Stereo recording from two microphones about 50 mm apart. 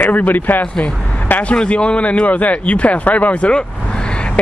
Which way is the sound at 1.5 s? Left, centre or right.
Left.